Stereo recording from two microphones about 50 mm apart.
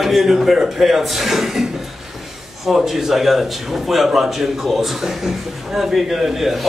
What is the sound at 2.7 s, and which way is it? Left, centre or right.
A man's voice, centre.